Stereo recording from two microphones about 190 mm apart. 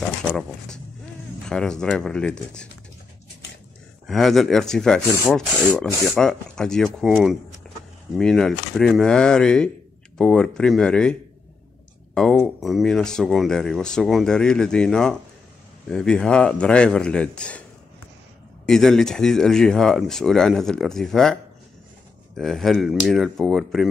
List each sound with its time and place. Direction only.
0.2 s speech: 5° left (ahead or behind)
4.1 s speech: centre (ahead or behind)
18.7 s speech: 5° left (ahead or behind)
22.4 s speech: centre (ahead or behind)